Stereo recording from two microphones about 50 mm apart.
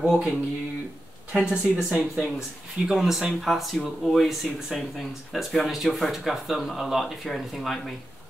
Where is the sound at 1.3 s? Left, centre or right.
Centre.